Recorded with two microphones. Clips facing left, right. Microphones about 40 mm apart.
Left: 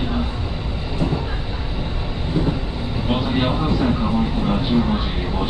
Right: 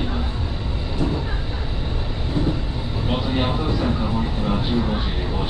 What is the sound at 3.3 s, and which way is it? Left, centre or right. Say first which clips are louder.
Vehicle: left 2 dB; centre.